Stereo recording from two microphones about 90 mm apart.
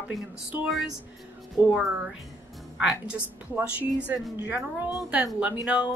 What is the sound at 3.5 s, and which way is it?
A woman's voice, 20° right (ahead or behind).